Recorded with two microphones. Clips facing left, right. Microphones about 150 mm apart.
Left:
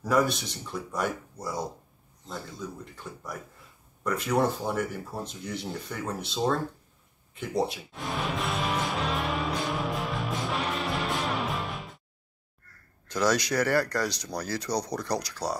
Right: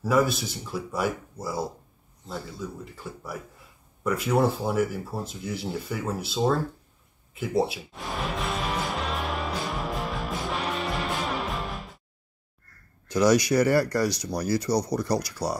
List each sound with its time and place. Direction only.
0.0 s speech: 5° right (ahead or behind)
7.3 s music: 5° right (ahead or behind)
13.1 s speech: 10° right (ahead or behind)